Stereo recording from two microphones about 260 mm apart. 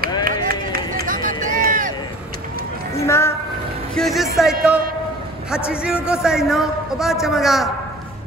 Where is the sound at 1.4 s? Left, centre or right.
Right.